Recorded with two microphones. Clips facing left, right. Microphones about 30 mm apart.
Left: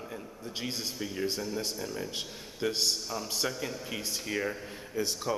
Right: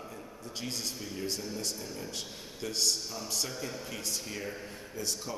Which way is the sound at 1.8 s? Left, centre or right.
Centre.